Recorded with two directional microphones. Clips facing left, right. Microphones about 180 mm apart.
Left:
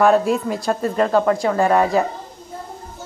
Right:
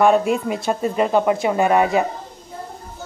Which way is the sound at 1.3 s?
15° right (ahead or behind).